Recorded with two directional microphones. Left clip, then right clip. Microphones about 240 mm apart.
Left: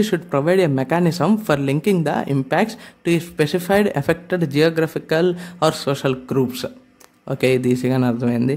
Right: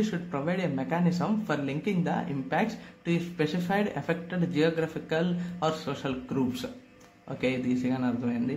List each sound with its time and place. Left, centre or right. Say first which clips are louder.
0.0 s speech: left 12 dB; left